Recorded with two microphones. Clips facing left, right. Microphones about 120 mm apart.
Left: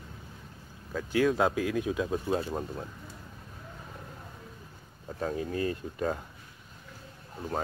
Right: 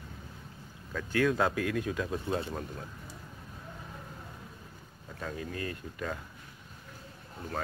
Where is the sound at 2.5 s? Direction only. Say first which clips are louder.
Left 4 dB; 25° left (ahead or behind).